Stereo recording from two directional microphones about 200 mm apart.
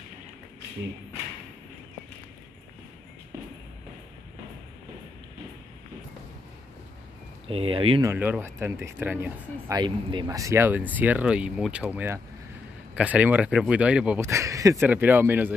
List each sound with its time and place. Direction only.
7.4 s speech: 30° right (ahead or behind)
8.0 s speech: 10° right (ahead or behind)
9.8 s speech: 20° right (ahead or behind)